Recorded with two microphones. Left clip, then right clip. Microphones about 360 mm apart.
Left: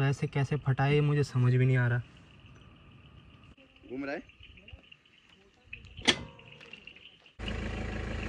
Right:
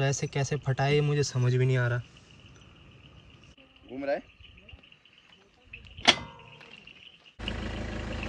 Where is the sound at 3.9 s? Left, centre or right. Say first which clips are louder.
Right 6 dB; right.